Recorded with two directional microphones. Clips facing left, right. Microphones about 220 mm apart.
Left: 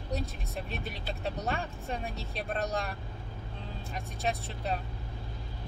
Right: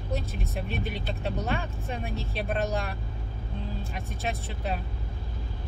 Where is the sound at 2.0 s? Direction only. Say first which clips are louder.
Right 4 dB; centre (ahead or behind).